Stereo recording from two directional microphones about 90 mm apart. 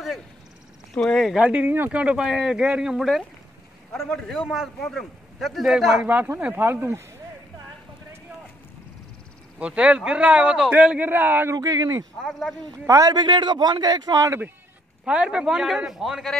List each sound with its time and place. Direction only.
0.9 s a man's voice: 5° left (ahead or behind)
1.4 s a man's voice: 15° right (ahead or behind); by 4.4 s 5° left (ahead or behind)
4.5 s a man's voice: 5° right (ahead or behind)
6.0 s speech: 25° right (ahead or behind)
9.6 s a man's voice: 10° right (ahead or behind)
11.5 s speech: 40° right (ahead or behind)
12.2 s a man's voice: 5° left (ahead or behind)
12.7 s speech: 35° right (ahead or behind)
13.1 s a man's voice: 55° right (ahead or behind); by 14.4 s 40° right (ahead or behind)
15.0 s a man's voice: 10° right (ahead or behind)